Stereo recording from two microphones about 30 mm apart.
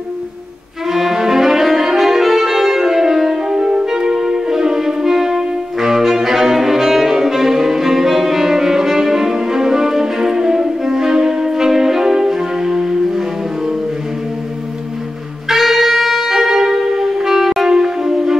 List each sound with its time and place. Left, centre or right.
0.8 s brass instrument: centre
3.4 s music: right
15.4 s saxophone: centre
16.3 s music: centre